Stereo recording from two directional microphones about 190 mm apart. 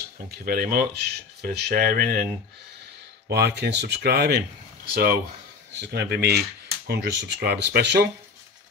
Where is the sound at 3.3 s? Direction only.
60° right (ahead or behind).